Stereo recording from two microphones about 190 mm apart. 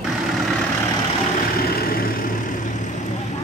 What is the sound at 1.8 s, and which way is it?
Vehicle, 50° left (ahead or behind).